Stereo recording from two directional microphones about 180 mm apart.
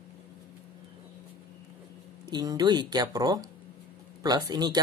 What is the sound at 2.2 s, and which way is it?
Speech, 25° right (ahead or behind).